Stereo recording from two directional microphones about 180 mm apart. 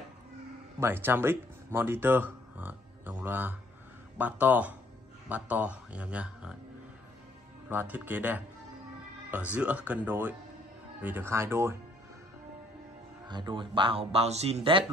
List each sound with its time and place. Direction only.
0.7 s speech: 10° right (ahead or behind)
7.7 s speech: 10° right (ahead or behind)
9.6 s speech: 10° right (ahead or behind)
13.3 s speech: 25° right (ahead or behind)